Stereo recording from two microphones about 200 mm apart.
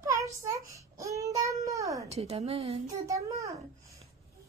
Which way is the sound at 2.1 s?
30° right (ahead or behind).